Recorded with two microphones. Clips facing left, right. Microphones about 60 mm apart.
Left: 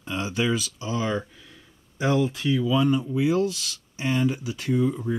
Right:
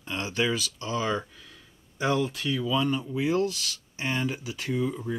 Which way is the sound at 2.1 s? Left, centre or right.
Left.